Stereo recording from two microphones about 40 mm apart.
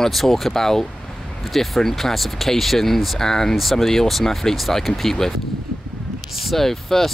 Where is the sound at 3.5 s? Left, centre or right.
Centre.